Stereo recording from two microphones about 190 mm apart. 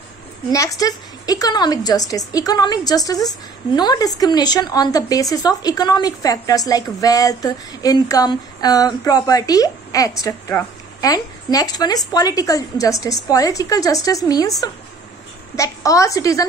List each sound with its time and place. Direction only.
0.5 s a woman's voice: 15° left (ahead or behind)
15.5 s a woman's voice: 15° left (ahead or behind)